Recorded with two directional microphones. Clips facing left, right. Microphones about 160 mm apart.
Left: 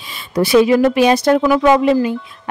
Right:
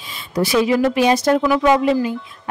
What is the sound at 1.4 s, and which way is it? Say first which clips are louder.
Speech: left 3 dB; 55° left (ahead or behind).